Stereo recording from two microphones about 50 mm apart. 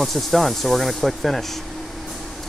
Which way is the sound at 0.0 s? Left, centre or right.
Centre.